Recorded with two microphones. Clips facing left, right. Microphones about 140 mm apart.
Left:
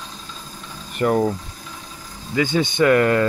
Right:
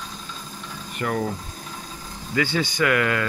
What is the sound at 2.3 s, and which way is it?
Speech, 20° left (ahead or behind).